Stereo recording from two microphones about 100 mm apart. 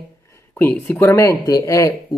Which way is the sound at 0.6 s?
15° left (ahead or behind).